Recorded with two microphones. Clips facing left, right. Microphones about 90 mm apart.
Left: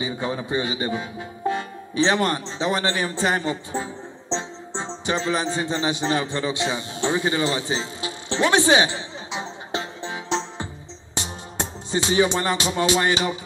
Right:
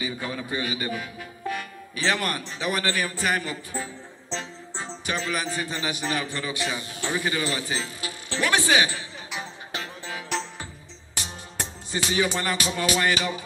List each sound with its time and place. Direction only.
0.0 s speech: 25° left (ahead or behind)
11.1 s music: 25° left (ahead or behind)